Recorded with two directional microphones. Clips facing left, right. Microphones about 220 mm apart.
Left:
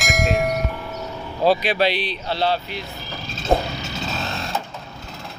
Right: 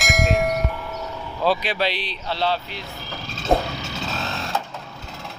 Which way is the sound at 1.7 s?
60° left (ahead or behind).